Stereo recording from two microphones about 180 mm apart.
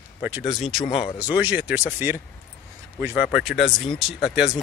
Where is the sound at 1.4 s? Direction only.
10° right (ahead or behind).